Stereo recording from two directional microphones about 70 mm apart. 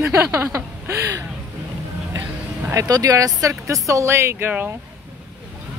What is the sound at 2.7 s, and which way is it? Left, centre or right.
Speech, right.